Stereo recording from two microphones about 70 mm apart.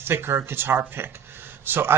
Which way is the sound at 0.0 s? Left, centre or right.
Right.